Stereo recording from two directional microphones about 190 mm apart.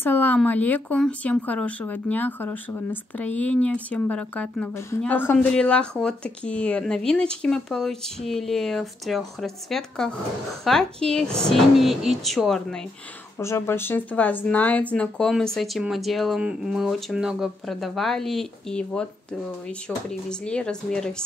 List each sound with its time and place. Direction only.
0.0 s speech: 10° left (ahead or behind)
13.4 s speech: 15° left (ahead or behind)
20.1 s speech: 5° left (ahead or behind)